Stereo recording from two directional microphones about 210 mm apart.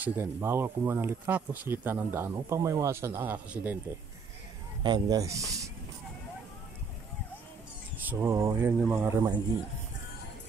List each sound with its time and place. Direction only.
0.0 s speech: 10° right (ahead or behind)
4.8 s speech: 20° right (ahead or behind)
8.0 s speech: 10° right (ahead or behind)